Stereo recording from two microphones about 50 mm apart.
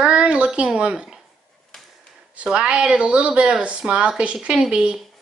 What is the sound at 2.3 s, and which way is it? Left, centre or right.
Speech, right.